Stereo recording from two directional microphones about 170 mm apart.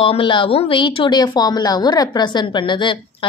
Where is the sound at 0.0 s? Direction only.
30° left (ahead or behind).